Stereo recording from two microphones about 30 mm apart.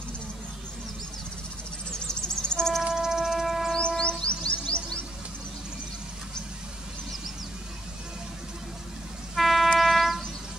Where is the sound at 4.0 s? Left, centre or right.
Left.